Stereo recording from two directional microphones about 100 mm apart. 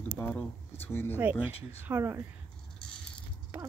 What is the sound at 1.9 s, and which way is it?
Speech, 20° right (ahead or behind).